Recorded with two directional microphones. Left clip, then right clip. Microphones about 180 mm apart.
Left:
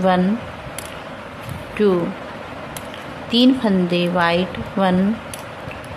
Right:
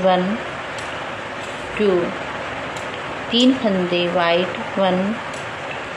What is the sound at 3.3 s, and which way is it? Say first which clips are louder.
Speech: left 1 dB; 35° left (ahead or behind).